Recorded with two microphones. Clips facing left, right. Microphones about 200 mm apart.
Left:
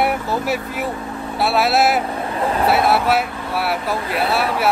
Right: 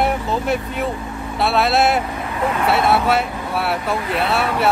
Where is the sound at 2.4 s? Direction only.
30° left (ahead or behind).